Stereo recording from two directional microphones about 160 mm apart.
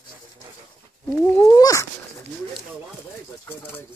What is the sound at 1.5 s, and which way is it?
Cat, 20° left (ahead or behind).